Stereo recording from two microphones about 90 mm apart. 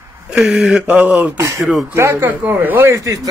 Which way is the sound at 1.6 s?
Centre (ahead or behind).